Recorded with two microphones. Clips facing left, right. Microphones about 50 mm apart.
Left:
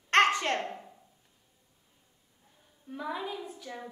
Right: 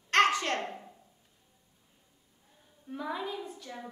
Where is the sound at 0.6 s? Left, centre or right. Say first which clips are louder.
Even; centre.